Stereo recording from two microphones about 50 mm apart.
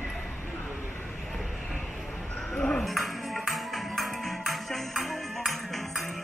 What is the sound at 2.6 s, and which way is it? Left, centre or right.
Ping, centre.